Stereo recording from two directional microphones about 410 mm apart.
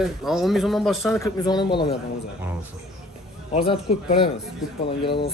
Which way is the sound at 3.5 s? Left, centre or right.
Centre.